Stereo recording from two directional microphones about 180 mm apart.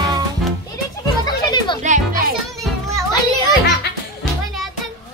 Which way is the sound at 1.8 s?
45° right (ahead or behind).